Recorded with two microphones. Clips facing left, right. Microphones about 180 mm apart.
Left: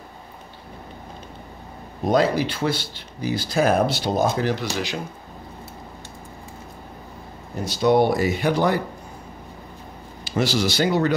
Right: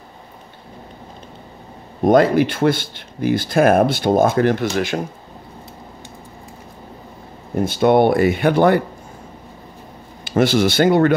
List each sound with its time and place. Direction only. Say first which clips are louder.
2.0 s speech: right 6 dB; 50° right (ahead or behind)
7.6 s speech: right 4 dB; 55° right (ahead or behind)
10.2 s speech: right 6 dB; 55° right (ahead or behind)